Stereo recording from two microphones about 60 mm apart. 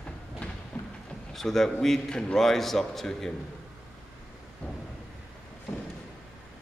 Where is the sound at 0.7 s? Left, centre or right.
Left.